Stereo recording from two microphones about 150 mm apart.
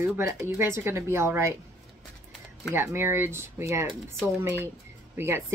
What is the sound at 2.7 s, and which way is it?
Speech, 15° right (ahead or behind).